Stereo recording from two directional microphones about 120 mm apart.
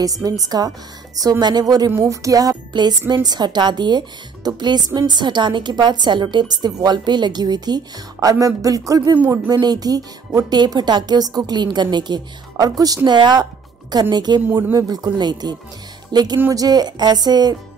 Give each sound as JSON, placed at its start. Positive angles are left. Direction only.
{"t": 0.0, "sound": "a woman's voice", "side_deg": -30}
{"t": 1.9, "sound": "music", "side_deg": -25}
{"t": 3.1, "sound": "a woman's voice", "side_deg": -35}
{"t": 16.3, "sound": "music", "side_deg": -20}
{"t": 16.6, "sound": "a woman's voice", "side_deg": -35}